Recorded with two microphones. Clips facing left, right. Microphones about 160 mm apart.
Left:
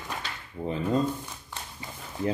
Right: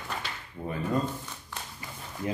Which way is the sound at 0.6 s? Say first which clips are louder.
Left 3 dB; 20° left (ahead or behind).